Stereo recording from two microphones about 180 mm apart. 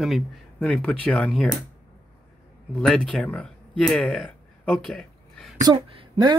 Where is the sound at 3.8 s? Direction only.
Centre (ahead or behind).